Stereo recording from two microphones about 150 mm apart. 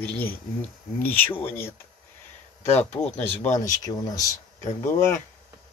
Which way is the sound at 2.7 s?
45° left (ahead or behind).